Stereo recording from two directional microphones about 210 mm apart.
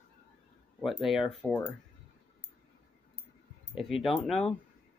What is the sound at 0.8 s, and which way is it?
Speech, centre (ahead or behind).